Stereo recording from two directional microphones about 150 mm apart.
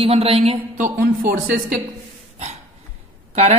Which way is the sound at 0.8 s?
70° right (ahead or behind).